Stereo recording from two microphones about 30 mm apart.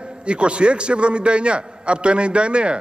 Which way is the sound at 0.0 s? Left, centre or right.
Right.